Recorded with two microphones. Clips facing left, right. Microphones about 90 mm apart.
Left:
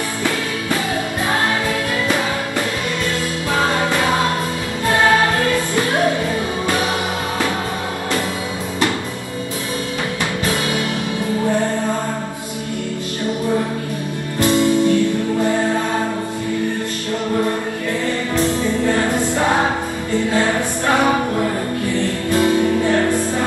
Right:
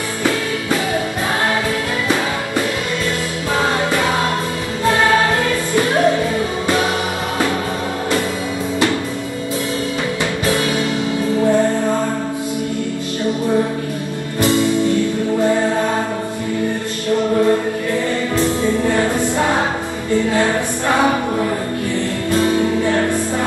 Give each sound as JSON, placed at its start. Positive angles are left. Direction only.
{"t": 14.4, "sound": "music", "side_deg": -20}